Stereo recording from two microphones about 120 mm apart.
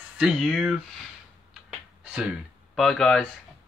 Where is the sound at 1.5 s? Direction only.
5° right (ahead or behind).